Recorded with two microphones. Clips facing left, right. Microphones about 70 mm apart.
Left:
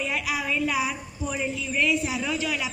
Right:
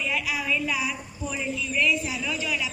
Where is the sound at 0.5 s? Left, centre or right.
Left.